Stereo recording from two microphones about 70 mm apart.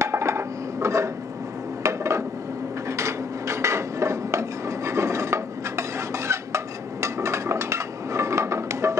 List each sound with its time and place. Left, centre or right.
0.0 s dishes: right